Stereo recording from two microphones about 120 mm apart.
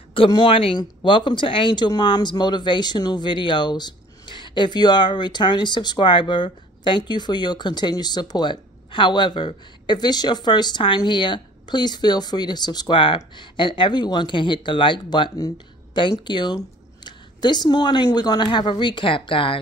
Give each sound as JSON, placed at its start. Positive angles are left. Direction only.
{"t": 0.3, "sound": "speech", "side_deg": 40}